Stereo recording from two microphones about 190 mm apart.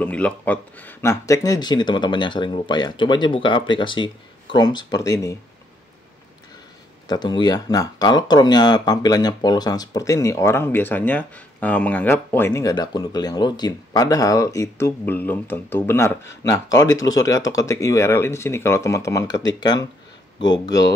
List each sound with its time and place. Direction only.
0.0 s speech: 5° left (ahead or behind)
7.1 s speech: 20° left (ahead or behind)